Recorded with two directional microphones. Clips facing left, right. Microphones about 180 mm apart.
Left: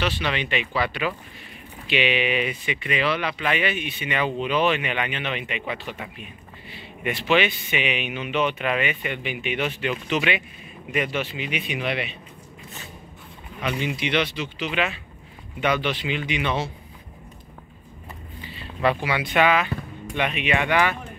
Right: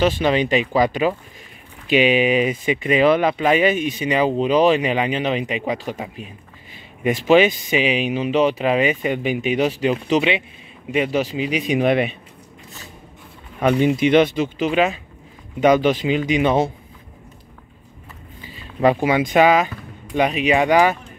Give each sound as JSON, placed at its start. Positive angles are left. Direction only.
{"t": 0.0, "sound": "speech", "side_deg": -40}
{"t": 13.6, "sound": "speech", "side_deg": -50}
{"t": 18.8, "sound": "speech", "side_deg": -45}